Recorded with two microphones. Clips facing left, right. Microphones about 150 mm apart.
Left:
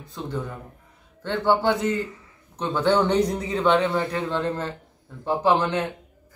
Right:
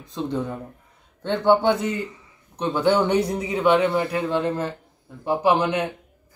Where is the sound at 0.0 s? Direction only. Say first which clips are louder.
Right 5 dB; 20° right (ahead or behind).